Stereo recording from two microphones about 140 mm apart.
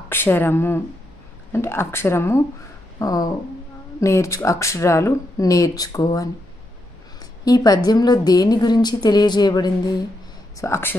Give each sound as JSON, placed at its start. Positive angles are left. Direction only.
{"t": 0.1, "sound": "a woman's voice", "side_deg": 15}
{"t": 7.4, "sound": "a woman's voice", "side_deg": 25}
{"t": 10.6, "sound": "speech", "side_deg": 15}